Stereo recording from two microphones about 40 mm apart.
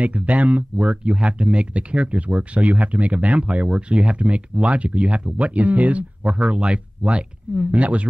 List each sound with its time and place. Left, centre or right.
0.0 s speech: right
0.8 s speech: right
3.6 s speech: centre
4.0 s speech: right